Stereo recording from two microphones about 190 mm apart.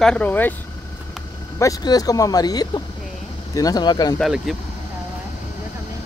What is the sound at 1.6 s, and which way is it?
Speech, 20° left (ahead or behind).